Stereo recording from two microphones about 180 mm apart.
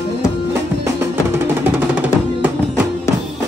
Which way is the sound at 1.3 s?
10° right (ahead or behind).